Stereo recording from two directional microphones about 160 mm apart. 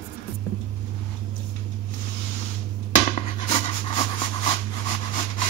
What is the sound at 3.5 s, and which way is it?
Dog, 35° left (ahead or behind).